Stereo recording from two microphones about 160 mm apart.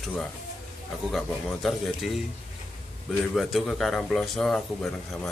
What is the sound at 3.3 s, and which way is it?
Speech, centre (ahead or behind).